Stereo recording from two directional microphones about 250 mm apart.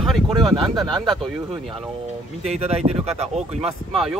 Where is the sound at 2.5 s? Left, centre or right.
Right.